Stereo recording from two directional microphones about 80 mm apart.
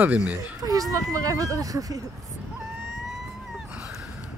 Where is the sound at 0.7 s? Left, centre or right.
Right.